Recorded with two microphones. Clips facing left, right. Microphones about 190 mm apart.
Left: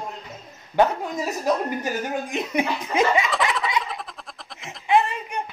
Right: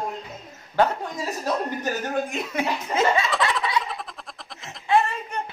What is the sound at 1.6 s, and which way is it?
Speech, 10° left (ahead or behind).